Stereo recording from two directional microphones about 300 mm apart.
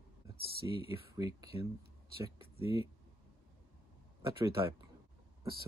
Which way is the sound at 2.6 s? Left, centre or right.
Centre.